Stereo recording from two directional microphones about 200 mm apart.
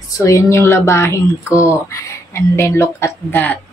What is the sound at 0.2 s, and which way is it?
Speech, 15° left (ahead or behind).